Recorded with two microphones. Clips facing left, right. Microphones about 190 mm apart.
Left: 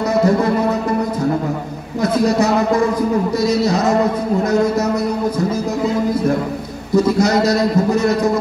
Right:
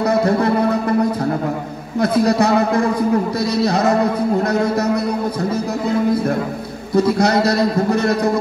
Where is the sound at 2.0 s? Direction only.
60° right (ahead or behind).